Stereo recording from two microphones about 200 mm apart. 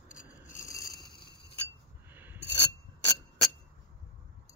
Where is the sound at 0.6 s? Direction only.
15° left (ahead or behind).